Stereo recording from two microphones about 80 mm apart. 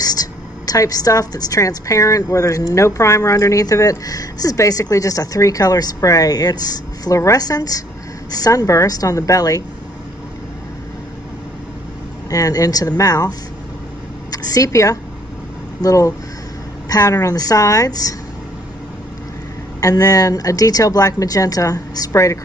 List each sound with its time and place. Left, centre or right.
0.0 s a woman's voice: left
7.1 s a woman's voice: left
7.3 s a woman's voice: left
12.3 s a woman's voice: left
14.3 s a woman's voice: left
19.8 s a woman's voice: left
22.1 s a woman's voice: left